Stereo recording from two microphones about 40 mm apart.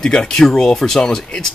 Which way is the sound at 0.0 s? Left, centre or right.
Centre.